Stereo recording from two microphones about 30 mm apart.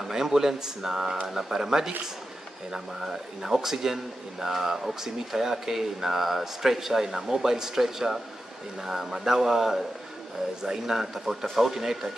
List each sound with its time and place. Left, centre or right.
0.0 s speech: centre